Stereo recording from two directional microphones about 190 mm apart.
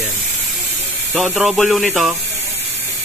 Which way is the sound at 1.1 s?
5° right (ahead or behind).